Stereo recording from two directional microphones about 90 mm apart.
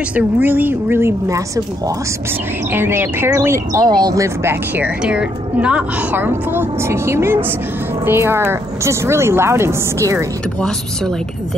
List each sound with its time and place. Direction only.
0.1 s a woman's voice: 20° right (ahead or behind)
2.7 s a woman's voice: 25° right (ahead or behind)
3.8 s speech: 50° right (ahead or behind)
4.2 s a woman's voice: 30° right (ahead or behind)
4.8 s speech: 10° right (ahead or behind)
6.1 s a woman's voice: 25° right (ahead or behind)